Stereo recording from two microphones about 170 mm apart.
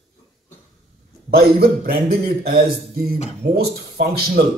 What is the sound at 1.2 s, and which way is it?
A man's voice, 65° right (ahead or behind).